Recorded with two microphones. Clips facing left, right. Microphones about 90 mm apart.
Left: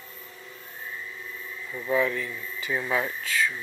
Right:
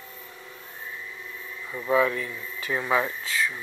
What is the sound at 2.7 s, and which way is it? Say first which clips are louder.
Speech: right 3 dB; 70° right (ahead or behind).